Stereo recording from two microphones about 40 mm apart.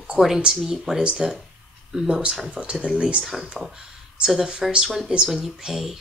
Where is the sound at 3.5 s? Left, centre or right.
Centre.